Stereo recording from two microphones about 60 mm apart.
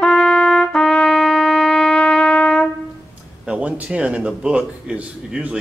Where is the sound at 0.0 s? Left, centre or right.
Centre.